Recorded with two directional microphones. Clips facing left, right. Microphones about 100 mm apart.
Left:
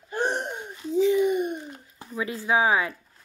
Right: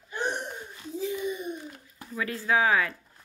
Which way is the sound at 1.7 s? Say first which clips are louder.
Left 2 dB; 20° left (ahead or behind).